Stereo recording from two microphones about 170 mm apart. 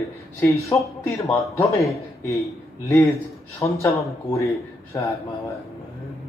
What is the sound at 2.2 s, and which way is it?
Speech, 20° left (ahead or behind).